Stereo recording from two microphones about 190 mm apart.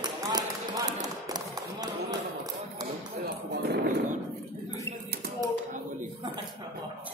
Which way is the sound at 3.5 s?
55° right (ahead or behind).